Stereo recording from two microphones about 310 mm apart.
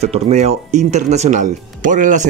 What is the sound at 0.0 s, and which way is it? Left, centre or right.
Speech, right.